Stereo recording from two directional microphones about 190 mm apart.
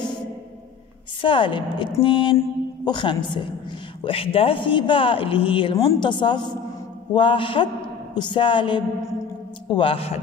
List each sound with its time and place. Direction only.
1.2 s a woman's voice: 25° left (ahead or behind)